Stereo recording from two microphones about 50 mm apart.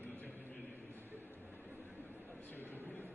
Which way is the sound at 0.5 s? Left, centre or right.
Left.